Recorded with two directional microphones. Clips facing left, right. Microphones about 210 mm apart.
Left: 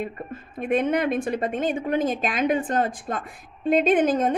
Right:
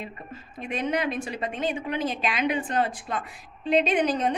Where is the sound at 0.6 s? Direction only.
55° left (ahead or behind).